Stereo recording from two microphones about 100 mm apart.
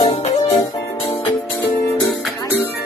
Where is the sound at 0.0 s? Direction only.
80° left.